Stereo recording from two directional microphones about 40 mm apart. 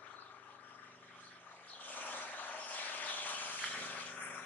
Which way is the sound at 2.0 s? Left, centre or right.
Left.